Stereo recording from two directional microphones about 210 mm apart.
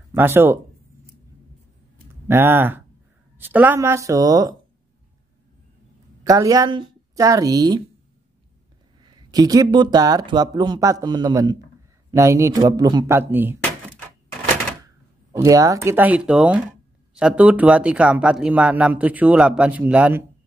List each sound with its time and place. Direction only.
0.1 s speech: 10° right (ahead or behind)
2.2 s speech: 10° right (ahead or behind)
6.2 s speech: 15° right (ahead or behind)
9.3 s speech: 15° right (ahead or behind)
15.3 s speech: 15° right (ahead or behind)